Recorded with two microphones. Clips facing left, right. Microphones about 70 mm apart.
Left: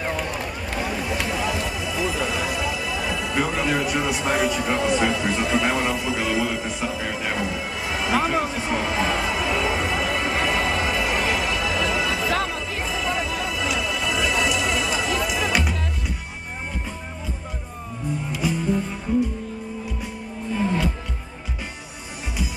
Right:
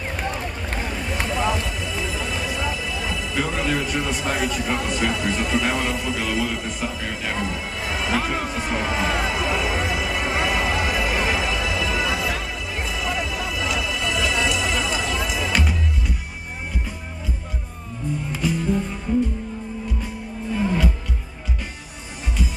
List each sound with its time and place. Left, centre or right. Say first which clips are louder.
0.7 s a sound: left 3 dB; right
2.3 s music: left 1 dB; centre
4.3 s speech: left 3 dB; centre
8.5 s music: even; centre
18.4 s music: right 1 dB; centre